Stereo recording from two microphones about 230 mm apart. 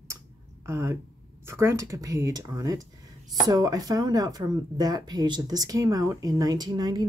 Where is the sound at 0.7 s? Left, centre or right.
Centre.